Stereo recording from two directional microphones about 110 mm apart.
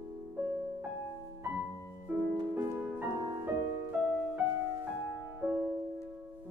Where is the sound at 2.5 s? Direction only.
25° right (ahead or behind).